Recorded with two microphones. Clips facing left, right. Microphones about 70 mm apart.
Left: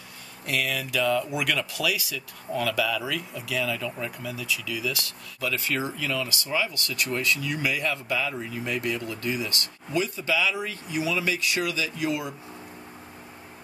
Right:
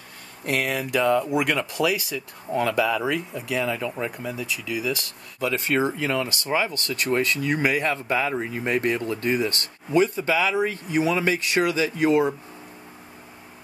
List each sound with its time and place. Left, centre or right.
0.5 s speech: right